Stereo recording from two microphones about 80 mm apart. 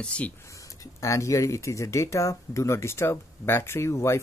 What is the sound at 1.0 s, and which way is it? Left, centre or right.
Speech, left.